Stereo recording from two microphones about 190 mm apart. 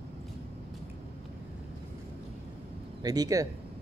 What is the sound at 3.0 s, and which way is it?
Speech, 20° right (ahead or behind).